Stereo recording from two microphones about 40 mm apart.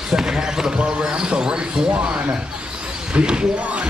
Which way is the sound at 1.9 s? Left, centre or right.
Right.